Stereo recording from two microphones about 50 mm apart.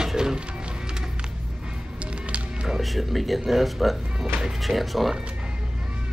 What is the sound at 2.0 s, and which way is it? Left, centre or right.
Music, right.